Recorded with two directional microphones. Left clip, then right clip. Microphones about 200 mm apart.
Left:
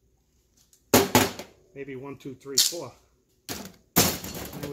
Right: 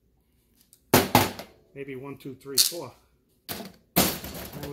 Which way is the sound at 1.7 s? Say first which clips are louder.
Even; 25° right (ahead or behind).